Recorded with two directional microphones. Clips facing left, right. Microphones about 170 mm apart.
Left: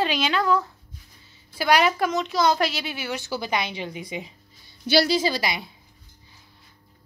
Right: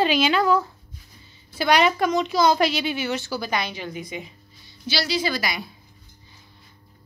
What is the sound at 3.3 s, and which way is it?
A woman's voice, 20° left (ahead or behind).